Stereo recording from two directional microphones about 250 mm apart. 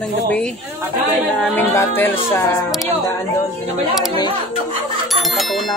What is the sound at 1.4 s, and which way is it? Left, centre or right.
Music, centre.